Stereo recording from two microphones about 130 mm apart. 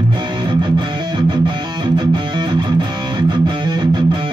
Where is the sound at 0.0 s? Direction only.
40° right (ahead or behind).